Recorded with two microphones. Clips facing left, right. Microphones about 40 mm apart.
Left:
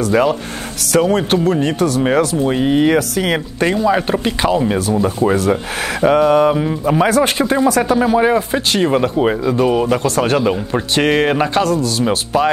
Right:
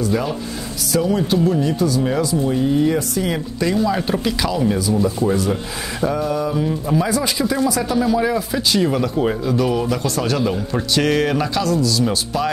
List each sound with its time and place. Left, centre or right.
0.0 s speech: left
3.7 s speech: left
5.0 s speech: left